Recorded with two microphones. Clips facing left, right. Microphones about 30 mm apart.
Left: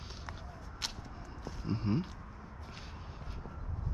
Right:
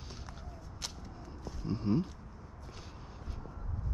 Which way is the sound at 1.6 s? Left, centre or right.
Centre.